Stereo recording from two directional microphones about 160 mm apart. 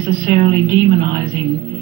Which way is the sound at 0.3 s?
25° right (ahead or behind).